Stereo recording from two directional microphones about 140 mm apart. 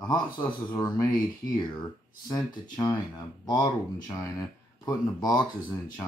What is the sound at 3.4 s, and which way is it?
Speech, 30° left (ahead or behind).